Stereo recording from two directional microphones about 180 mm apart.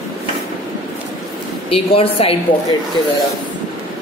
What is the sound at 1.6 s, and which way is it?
Speech, 30° left (ahead or behind).